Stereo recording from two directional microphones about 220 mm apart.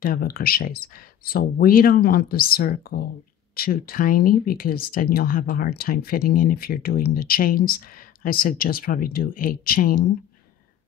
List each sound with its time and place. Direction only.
0.0 s speech: 40° left (ahead or behind)